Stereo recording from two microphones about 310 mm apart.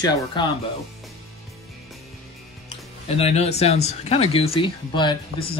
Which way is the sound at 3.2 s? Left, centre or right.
Left.